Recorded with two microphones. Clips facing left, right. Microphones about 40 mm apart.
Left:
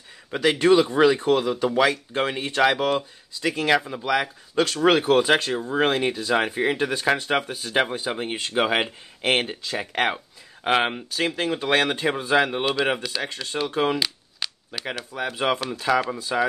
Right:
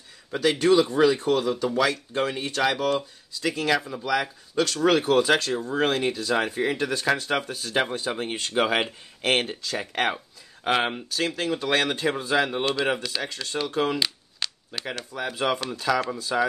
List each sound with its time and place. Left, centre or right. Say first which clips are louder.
0.3 s speech: left 2 dB; left
1.4 s speech: left 3 dB; left
13.9 s a sound: left 1 dB; centre
14.7 s speech: left 3 dB; centre
15.3 s speech: left 2 dB; left